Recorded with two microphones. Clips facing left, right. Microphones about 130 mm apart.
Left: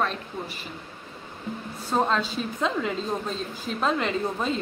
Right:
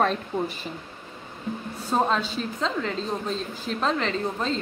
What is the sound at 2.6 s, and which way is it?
A woman's voice, 10° left (ahead or behind).